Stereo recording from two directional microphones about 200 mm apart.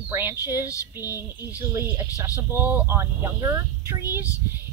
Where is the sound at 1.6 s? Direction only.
15° right (ahead or behind).